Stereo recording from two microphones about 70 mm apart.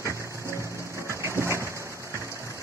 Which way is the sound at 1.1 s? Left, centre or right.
Right.